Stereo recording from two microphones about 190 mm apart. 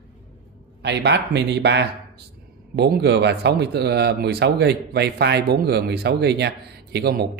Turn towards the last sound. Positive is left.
turn(degrees=-55)  # may be behind; listen again after turning